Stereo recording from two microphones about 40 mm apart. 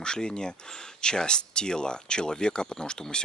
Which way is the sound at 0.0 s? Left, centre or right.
Centre.